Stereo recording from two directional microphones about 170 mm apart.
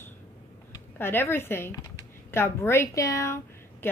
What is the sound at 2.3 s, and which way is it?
A woman's voice, 15° left (ahead or behind).